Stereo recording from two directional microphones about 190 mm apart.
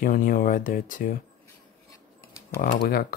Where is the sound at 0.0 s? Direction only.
45° left (ahead or behind).